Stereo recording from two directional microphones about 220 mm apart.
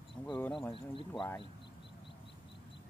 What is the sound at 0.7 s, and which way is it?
Speech, 25° left (ahead or behind).